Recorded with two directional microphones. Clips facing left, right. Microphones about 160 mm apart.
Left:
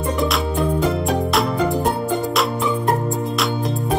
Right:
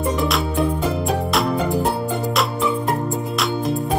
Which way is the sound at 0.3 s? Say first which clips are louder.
Even; centre (ahead or behind).